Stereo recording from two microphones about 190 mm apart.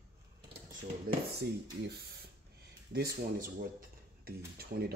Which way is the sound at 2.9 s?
55° right (ahead or behind).